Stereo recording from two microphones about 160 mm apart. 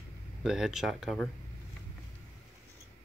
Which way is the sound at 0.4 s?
Centre (ahead or behind).